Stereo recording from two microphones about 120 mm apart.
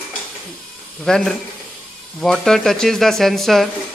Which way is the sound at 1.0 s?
5° left (ahead or behind).